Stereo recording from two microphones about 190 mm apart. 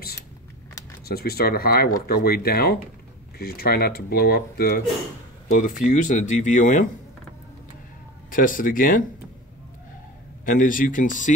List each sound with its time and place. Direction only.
1.0 s speech: 55° left (ahead or behind)
5.9 s speech: 40° left (ahead or behind)
8.3 s speech: 45° left (ahead or behind)
10.4 s speech: 45° left (ahead or behind)